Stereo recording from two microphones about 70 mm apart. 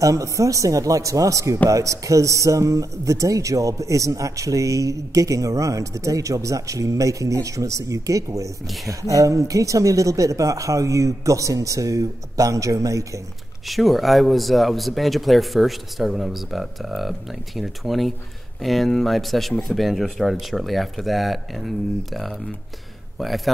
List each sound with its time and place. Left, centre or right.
0.0 s speech: right
13.7 s a man's voice: centre